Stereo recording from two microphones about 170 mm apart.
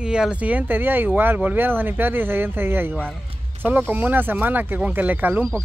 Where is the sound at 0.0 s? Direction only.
5° right (ahead or behind).